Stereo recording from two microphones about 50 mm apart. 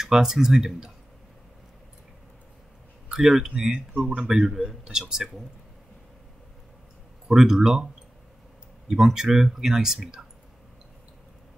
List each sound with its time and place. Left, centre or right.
0.0 s speech: centre
3.1 s speech: centre
3.9 s speech: right
4.2 s speech: centre
7.2 s speech: centre